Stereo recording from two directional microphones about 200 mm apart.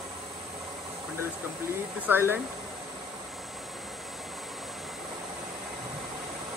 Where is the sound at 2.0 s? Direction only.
10° right (ahead or behind).